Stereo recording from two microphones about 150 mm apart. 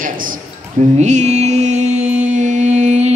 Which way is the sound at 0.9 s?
50° right (ahead or behind).